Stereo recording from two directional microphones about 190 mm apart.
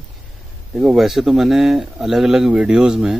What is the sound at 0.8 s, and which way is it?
Speech, centre (ahead or behind).